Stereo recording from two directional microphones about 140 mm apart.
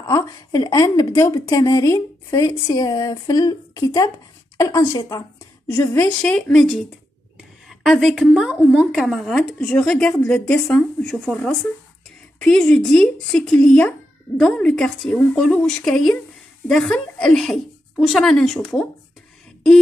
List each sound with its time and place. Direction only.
0.0 s a woman's voice: 25° left (ahead or behind)
6.2 s a woman's voice: 5° left (ahead or behind)